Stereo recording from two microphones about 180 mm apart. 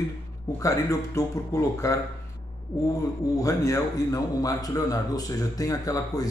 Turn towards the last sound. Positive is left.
turn(degrees=20)  # may be behind; listen again after turning